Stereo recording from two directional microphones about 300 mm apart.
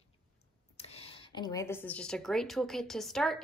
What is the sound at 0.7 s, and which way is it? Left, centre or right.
Speech, centre.